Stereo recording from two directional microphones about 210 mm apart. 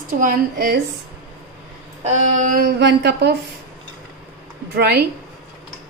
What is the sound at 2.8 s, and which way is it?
Speech, 50° right (ahead or behind).